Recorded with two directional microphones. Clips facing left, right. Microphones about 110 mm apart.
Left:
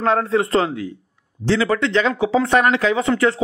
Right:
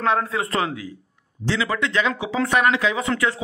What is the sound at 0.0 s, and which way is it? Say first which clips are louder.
Speech: left 4 dB; 35° left (ahead or behind).